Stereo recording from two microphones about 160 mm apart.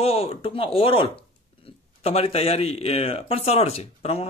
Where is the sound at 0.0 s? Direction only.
35° left (ahead or behind).